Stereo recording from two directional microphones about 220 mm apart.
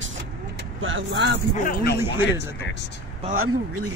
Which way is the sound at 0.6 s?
60° right (ahead or behind).